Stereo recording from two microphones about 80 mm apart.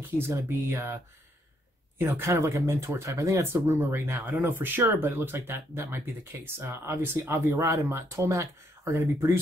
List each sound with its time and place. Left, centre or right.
0.0 s speech: right
2.0 s speech: right